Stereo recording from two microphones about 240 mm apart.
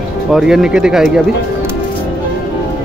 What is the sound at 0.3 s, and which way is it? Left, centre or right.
Speech, centre.